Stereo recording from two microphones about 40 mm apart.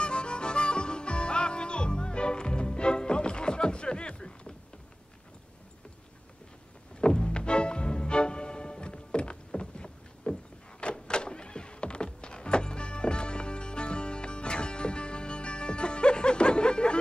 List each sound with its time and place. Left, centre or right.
0.0 s music: left
7.0 s music: centre
10.8 s thunk: left